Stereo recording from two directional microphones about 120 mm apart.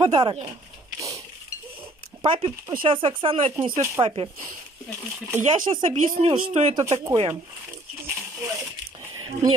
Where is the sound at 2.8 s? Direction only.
45° right (ahead or behind).